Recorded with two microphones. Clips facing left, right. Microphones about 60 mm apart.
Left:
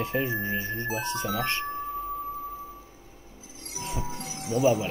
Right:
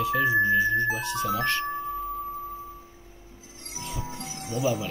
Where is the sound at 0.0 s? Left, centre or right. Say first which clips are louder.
Right 6 dB; left.